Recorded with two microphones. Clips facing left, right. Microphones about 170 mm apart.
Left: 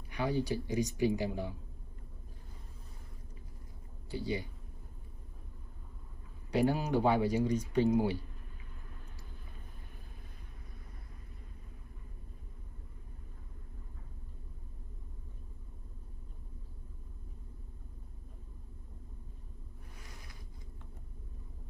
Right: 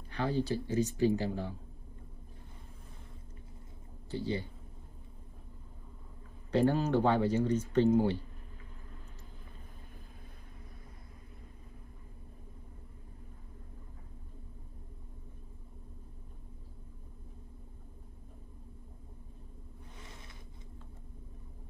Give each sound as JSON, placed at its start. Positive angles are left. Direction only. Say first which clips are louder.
{"t": 0.1, "sound": "speech", "louder": "right 1 dB", "side_deg": 15}
{"t": 4.1, "sound": "speech", "louder": "right 1 dB", "side_deg": 15}
{"t": 6.5, "sound": "speech", "louder": "right 2 dB", "side_deg": 10}
{"t": 20.0, "sound": "a sound", "louder": "right 2 dB", "side_deg": -25}